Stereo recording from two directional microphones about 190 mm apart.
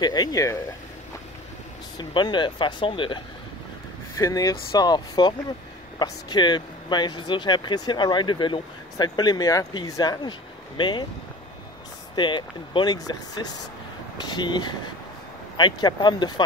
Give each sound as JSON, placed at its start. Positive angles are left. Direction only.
{"t": 0.0, "sound": "speech", "side_deg": 20}
{"t": 2.0, "sound": "speech", "side_deg": 25}
{"t": 12.2, "sound": "speech", "side_deg": 25}